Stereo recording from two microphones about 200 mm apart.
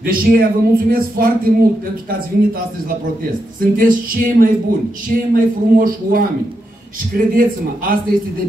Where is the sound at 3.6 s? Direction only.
45° right (ahead or behind).